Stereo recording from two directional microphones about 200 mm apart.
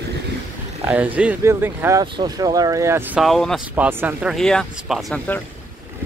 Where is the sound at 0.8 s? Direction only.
10° right (ahead or behind).